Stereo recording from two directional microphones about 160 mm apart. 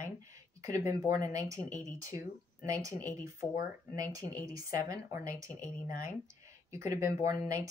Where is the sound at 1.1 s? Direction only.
20° right (ahead or behind).